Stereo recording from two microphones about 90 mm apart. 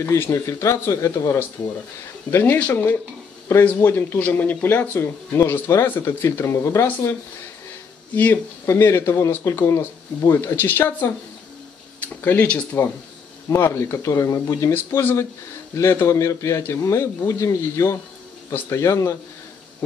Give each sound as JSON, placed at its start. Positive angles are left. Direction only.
{"t": 0.0, "sound": "speech", "side_deg": 30}
{"t": 8.1, "sound": "speech", "side_deg": 20}
{"t": 8.6, "sound": "speech", "side_deg": 30}